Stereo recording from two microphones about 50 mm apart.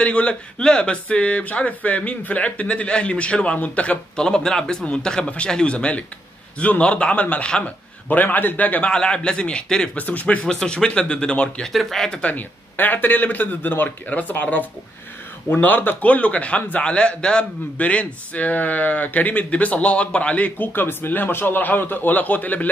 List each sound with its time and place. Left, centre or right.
0.0 s speech: left
4.2 s speech: centre; by 8.9 s left
8.9 s speech: centre
9.9 s speech: left
11.6 s speech: centre
12.2 s speech: left
16.8 s speech: left